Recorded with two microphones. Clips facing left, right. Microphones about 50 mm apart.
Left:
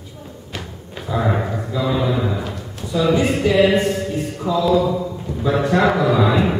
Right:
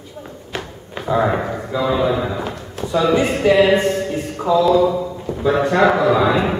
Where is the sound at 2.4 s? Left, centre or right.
Centre.